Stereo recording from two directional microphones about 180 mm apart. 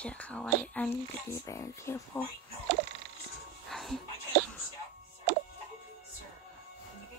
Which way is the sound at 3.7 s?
Centre (ahead or behind).